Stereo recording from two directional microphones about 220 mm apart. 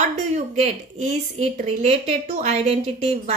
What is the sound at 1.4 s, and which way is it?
A woman's voice, 30° right (ahead or behind).